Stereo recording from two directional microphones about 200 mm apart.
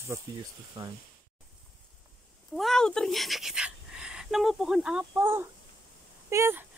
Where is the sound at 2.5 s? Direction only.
Centre (ahead or behind).